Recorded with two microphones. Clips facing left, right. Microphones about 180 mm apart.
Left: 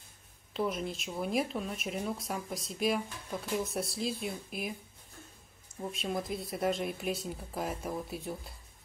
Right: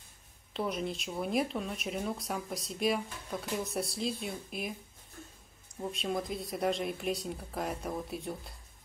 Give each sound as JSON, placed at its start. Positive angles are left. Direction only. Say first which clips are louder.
{"t": 0.5, "sound": "speech", "louder": "left 1 dB", "side_deg": 0}
{"t": 5.8, "sound": "speech", "louder": "right 1 dB", "side_deg": 0}